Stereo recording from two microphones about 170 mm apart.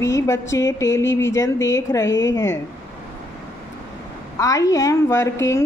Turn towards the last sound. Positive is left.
turn(degrees=15)  # may be behind; listen again after turning